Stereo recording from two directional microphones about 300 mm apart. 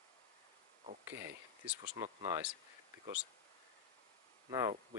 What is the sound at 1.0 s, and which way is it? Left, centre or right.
Speech, centre.